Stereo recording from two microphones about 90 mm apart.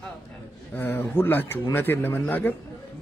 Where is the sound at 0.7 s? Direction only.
25° left (ahead or behind).